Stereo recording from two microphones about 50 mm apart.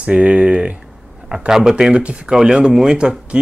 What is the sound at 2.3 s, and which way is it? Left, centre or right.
Speech, centre.